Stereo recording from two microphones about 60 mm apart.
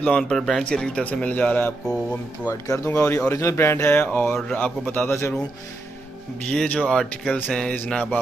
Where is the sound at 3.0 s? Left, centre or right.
Left.